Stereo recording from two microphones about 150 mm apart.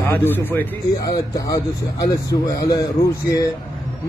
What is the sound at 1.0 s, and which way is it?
Speech, 25° left (ahead or behind).